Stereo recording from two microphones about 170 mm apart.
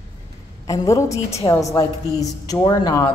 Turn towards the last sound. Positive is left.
turn(degrees=20)  # may be behind; listen again after turning